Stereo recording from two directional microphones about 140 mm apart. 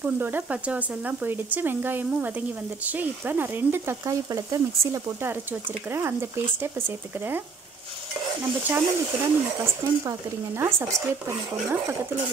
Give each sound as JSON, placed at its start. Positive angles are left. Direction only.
{"t": 0.0, "sound": "speech", "side_deg": -15}
{"t": 8.6, "sound": "speech", "side_deg": -15}